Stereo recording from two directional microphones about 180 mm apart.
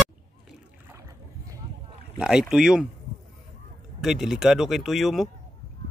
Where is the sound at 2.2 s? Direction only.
5° right (ahead or behind).